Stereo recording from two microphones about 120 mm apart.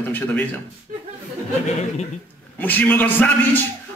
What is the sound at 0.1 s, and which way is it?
Speech, 15° left (ahead or behind).